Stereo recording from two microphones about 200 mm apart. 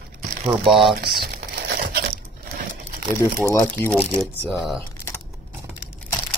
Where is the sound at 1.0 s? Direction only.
50° right (ahead or behind).